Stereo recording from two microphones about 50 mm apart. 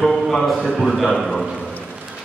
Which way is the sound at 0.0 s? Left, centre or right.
Centre.